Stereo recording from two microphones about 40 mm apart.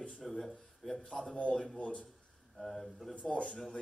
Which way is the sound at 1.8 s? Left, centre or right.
Left.